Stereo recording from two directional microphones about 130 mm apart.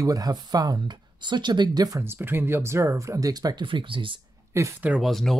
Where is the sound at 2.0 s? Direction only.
15° right (ahead or behind); by 4.2 s 40° right (ahead or behind).